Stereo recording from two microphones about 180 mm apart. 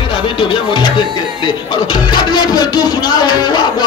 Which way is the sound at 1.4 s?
25° left (ahead or behind).